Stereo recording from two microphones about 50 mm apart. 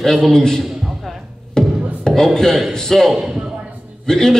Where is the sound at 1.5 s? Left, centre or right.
Centre.